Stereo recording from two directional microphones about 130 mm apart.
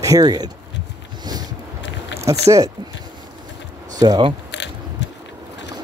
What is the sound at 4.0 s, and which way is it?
Speech, 35° right (ahead or behind).